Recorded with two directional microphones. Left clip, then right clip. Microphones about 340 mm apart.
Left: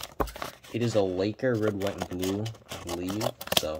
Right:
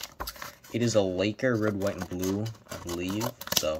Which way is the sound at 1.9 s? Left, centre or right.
Centre.